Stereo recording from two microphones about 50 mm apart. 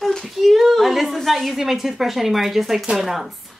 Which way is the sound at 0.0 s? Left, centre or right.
Centre.